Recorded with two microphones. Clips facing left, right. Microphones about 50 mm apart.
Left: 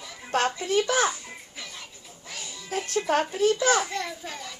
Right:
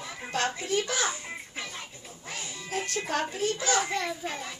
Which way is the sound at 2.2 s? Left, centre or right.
Right.